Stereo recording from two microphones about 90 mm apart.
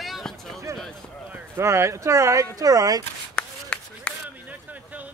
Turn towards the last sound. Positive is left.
turn(degrees=10)  # may be behind; listen again after turning